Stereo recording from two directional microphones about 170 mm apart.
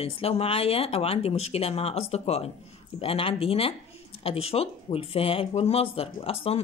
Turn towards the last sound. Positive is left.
turn(degrees=35)  # may be behind; listen again after turning